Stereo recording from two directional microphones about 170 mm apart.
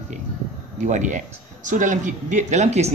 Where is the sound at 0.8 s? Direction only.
45° right (ahead or behind).